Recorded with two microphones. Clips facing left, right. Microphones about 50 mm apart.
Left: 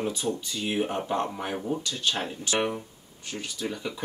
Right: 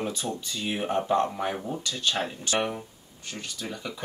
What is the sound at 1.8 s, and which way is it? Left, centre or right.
Speech, left.